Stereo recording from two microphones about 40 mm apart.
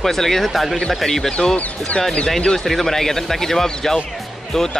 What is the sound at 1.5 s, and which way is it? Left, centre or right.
Speech, left.